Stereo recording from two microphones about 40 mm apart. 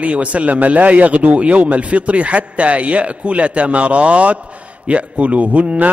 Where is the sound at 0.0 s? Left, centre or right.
Right.